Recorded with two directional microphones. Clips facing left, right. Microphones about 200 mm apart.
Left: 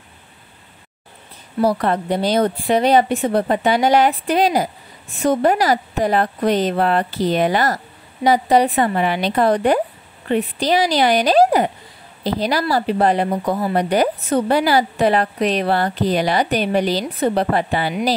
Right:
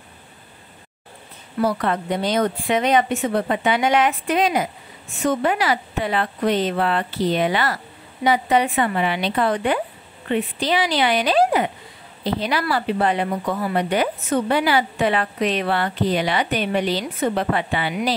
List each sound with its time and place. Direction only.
1.6 s speech: 35° left (ahead or behind)